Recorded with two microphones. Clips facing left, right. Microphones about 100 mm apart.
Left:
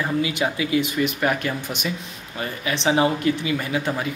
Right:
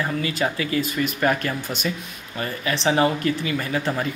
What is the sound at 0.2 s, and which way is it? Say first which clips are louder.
Speech: left 1 dB; 15° left (ahead or behind).